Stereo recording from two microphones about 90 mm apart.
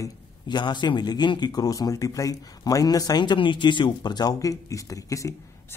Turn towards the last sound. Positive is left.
turn(degrees=35)  # may be behind; listen again after turning